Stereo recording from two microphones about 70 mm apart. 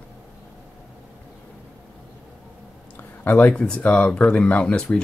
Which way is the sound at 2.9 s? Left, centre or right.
Left.